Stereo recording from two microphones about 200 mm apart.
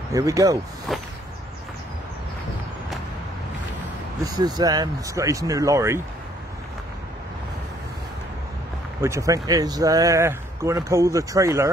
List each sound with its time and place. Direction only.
0.1 s speech: 15° right (ahead or behind)
0.9 s whip: centre (ahead or behind)
4.2 s speech: 20° right (ahead or behind)
9.0 s speech: 15° right (ahead or behind)